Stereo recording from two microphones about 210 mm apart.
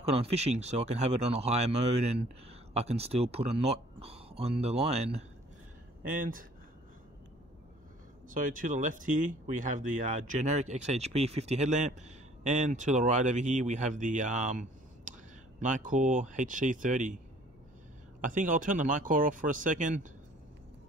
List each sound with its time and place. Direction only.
0.0 s speech: 30° right (ahead or behind)
6.0 s speech: 40° right (ahead or behind)
8.3 s speech: 40° right (ahead or behind)
18.2 s speech: 40° right (ahead or behind)